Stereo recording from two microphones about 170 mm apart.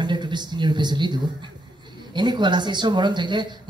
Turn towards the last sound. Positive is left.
turn(degrees=-25)  # may be behind; listen again after turning